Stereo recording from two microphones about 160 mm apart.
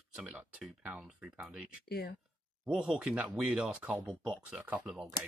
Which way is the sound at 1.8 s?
80° left.